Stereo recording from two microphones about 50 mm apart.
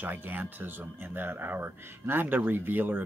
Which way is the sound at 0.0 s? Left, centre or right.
Right.